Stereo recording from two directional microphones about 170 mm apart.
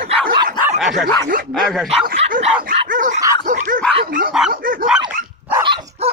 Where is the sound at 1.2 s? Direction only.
60° right (ahead or behind).